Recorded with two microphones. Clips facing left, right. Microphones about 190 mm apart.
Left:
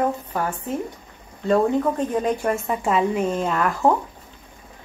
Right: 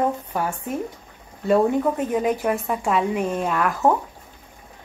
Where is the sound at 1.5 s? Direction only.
10° right (ahead or behind).